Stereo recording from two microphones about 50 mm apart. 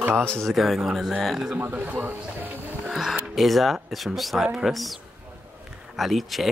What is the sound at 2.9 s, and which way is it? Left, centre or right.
Music, centre.